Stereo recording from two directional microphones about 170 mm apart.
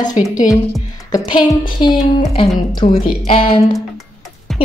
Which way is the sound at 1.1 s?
25° left (ahead or behind).